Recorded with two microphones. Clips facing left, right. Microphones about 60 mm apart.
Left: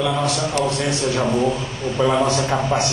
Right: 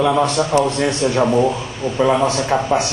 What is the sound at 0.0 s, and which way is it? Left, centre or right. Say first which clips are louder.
A man's voice: right 5 dB; right.